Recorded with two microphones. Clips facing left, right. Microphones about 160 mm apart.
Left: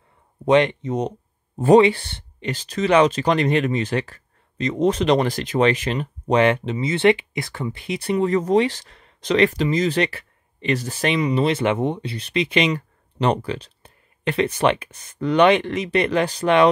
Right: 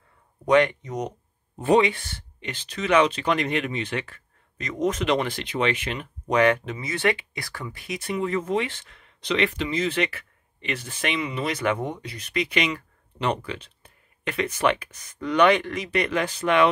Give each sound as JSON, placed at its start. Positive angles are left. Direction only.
{"t": 0.5, "sound": "speech", "side_deg": 25}
{"t": 2.5, "sound": "speech", "side_deg": 40}